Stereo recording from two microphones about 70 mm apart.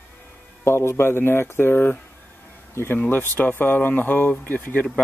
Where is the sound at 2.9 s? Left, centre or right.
Left.